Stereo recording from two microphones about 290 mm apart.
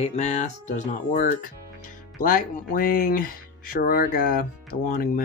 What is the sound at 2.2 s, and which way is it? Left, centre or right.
Speech, left.